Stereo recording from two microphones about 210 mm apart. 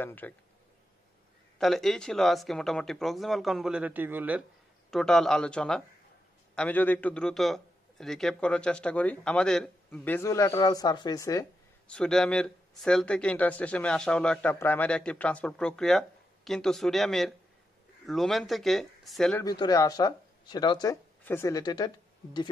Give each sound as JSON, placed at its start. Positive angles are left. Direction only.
{"t": 0.0, "sound": "a man's voice", "side_deg": 10}
{"t": 1.6, "sound": "speech", "side_deg": 0}
{"t": 4.9, "sound": "a man's voice", "side_deg": 0}
{"t": 11.9, "sound": "speech", "side_deg": 5}
{"t": 19.4, "sound": "speech", "side_deg": 20}